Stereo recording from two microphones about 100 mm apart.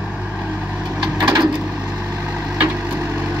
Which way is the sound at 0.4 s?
10° right (ahead or behind).